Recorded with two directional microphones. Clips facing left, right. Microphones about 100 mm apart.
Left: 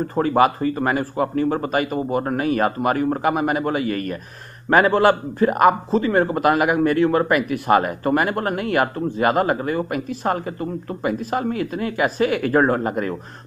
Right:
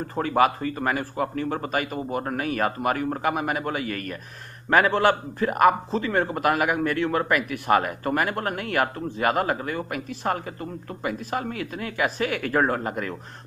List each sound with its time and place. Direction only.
0.1 s a man's voice: 30° left (ahead or behind)